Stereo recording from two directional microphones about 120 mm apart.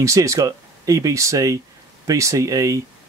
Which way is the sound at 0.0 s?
25° right (ahead or behind).